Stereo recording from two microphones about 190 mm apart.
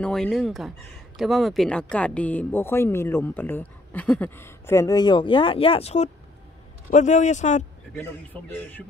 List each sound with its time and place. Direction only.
0.0 s a man's voice: 5° left (ahead or behind); by 7.6 s 40° left (ahead or behind)
7.9 s speech: 10° left (ahead or behind)